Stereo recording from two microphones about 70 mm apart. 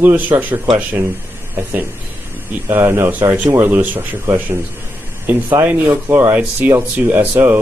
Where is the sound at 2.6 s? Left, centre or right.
Right.